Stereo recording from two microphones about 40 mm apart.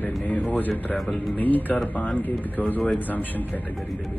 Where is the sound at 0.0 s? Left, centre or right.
Left.